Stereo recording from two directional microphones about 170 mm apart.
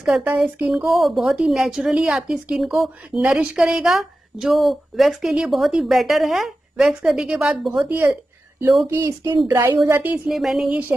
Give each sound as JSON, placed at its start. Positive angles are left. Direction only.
{"t": 0.0, "sound": "a woman's voice", "side_deg": -5}